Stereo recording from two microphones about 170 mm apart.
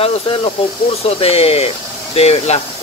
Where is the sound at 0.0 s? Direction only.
35° left (ahead or behind).